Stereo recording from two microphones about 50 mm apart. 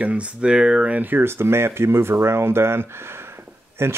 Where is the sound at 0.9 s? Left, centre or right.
Right.